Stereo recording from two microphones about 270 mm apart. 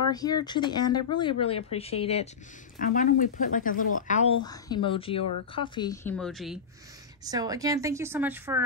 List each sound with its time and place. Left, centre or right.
0.1 s speech: centre
6.1 s speech: centre
7.2 s speech: centre